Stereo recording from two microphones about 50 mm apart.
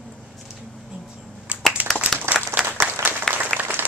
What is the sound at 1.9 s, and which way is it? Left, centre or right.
Applause, centre.